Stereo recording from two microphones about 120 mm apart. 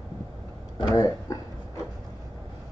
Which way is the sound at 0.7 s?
35° left (ahead or behind).